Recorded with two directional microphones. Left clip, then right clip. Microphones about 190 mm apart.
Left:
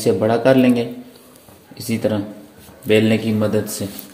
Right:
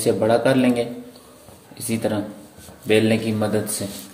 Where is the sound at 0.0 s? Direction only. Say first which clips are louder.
Left 2 dB; 35° left (ahead or behind).